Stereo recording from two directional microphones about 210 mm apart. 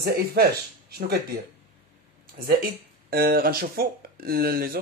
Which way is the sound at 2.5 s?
45° right (ahead or behind).